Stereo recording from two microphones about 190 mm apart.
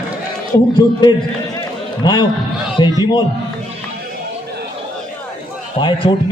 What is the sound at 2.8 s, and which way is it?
Speech, 25° left (ahead or behind).